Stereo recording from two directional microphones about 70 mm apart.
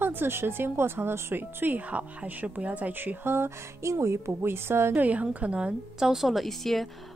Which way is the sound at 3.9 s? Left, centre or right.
Right.